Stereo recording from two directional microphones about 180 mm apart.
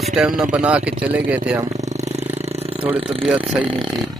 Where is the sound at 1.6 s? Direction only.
40° right (ahead or behind).